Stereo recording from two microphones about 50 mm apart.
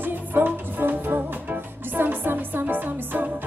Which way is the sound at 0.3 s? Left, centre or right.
Right.